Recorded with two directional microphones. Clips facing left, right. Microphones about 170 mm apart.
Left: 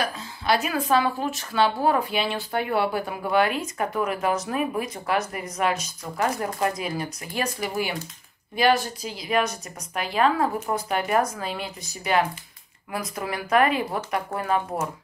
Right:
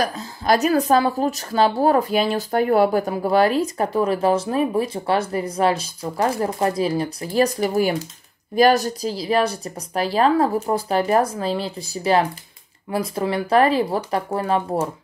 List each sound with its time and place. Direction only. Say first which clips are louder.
0.0 s speech: right 5 dB; 40° right (ahead or behind)